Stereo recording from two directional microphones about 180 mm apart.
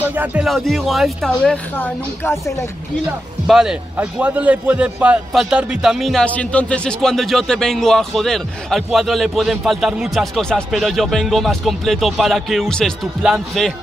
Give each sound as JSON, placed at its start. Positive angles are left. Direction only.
{"t": 0.0, "sound": "a man's voice", "side_deg": -10}
{"t": 3.4, "sound": "a man's voice", "side_deg": -5}